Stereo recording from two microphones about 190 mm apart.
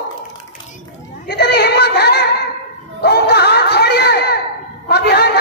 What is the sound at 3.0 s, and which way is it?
Crowd, 60° left (ahead or behind).